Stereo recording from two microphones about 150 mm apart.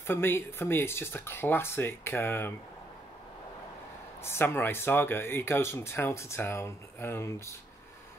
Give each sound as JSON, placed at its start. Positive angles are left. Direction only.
{"t": 0.0, "sound": "speech", "side_deg": 15}
{"t": 4.2, "sound": "speech", "side_deg": 15}